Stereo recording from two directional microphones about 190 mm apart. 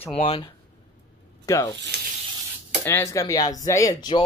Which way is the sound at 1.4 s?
15° left (ahead or behind).